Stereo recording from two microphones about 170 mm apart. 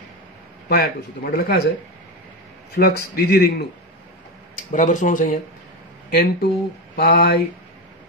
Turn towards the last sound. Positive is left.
turn(degrees=65)  # may be behind; listen again after turning